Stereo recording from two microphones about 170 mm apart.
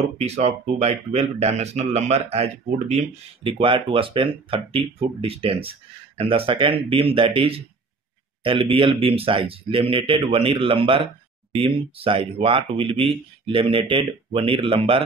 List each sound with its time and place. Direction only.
0.2 s speech: 40° right (ahead or behind)